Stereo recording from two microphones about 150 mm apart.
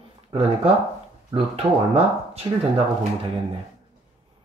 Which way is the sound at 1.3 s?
40° right (ahead or behind).